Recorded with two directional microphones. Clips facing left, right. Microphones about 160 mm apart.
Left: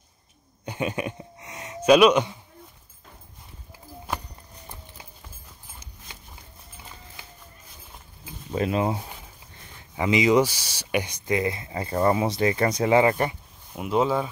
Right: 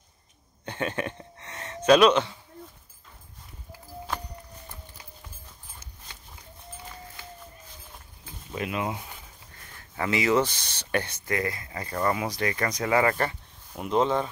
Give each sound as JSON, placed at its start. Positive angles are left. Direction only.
{"t": 0.7, "sound": "a sound", "side_deg": 10}
{"t": 8.5, "sound": "speech", "side_deg": 35}
{"t": 9.8, "sound": "speech", "side_deg": 15}